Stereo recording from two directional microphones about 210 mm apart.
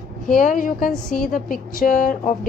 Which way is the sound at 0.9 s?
5° left (ahead or behind).